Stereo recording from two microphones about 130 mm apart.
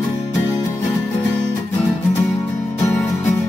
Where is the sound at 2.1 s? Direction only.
20° left (ahead or behind).